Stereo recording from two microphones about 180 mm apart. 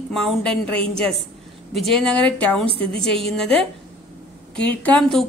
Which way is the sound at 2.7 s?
30° right (ahead or behind).